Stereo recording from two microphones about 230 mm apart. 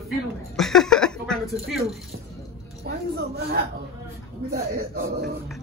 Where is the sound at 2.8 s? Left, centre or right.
Right.